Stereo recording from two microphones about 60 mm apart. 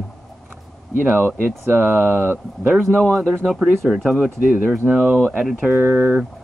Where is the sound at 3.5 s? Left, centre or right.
Centre.